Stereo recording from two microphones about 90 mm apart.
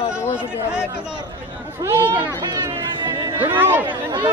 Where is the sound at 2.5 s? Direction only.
50° right (ahead or behind).